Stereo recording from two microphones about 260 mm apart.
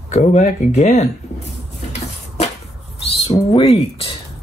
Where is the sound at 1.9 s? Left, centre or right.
Left.